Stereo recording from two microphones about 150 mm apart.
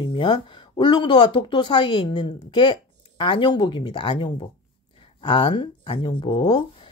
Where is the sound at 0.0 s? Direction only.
35° left (ahead or behind).